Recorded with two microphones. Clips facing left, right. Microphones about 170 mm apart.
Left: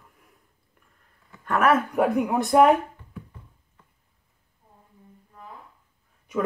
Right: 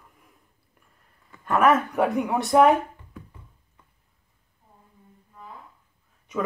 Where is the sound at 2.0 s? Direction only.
10° left (ahead or behind).